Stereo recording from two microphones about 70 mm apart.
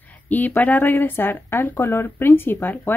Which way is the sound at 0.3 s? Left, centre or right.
Left.